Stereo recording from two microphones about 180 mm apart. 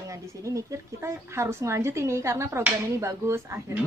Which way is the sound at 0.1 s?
15° right (ahead or behind).